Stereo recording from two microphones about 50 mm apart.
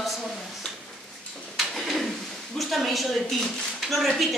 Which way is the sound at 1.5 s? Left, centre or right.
Centre.